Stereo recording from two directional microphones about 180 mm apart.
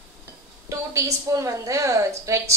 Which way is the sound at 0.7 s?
15° right (ahead or behind).